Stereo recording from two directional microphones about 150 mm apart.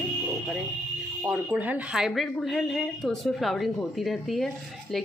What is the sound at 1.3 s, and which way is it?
Speech, 10° right (ahead or behind).